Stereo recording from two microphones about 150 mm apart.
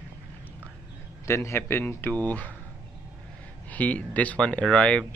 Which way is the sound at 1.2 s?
20° left (ahead or behind).